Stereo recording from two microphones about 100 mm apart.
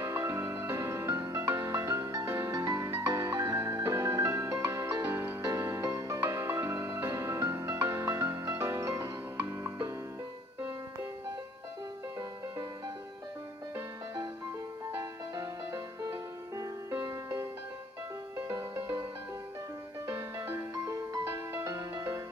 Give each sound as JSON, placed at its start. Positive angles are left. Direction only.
{"t": 0.0, "sound": "music", "side_deg": -30}
{"t": 2.5, "sound": "music", "side_deg": -35}
{"t": 15.0, "sound": "music", "side_deg": -35}
{"t": 20.1, "sound": "music", "side_deg": -25}
{"t": 20.7, "sound": "music", "side_deg": -35}
{"t": 21.2, "sound": "music", "side_deg": -25}